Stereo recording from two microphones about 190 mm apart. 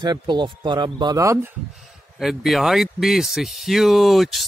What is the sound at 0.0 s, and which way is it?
Speech, 25° right (ahead or behind).